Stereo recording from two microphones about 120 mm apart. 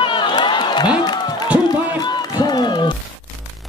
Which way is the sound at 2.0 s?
35° left (ahead or behind).